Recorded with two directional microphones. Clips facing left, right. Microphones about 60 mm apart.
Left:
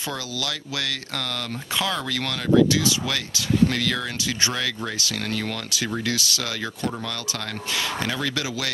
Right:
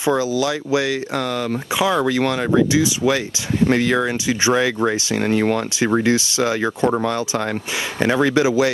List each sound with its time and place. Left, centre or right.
0.0 s speech: right
8.0 s speech: right